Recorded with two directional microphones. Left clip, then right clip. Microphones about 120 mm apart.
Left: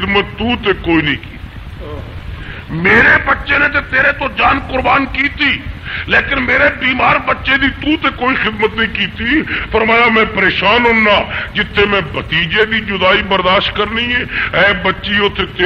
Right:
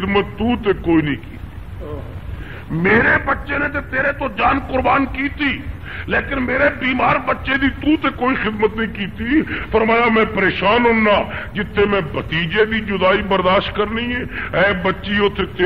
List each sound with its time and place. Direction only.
0.0 s a man's voice: 30° right (ahead or behind)
2.8 s a man's voice: 30° right (ahead or behind)